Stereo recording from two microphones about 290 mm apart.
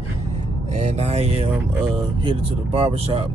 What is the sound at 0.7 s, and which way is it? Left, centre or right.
Speech, right.